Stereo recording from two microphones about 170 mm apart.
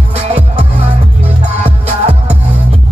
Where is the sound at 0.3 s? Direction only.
40° right (ahead or behind).